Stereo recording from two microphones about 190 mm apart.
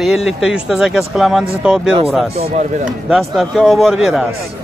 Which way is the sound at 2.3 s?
40° right (ahead or behind).